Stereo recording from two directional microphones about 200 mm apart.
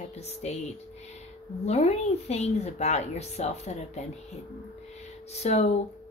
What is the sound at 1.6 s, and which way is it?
Speech, 35° left (ahead or behind).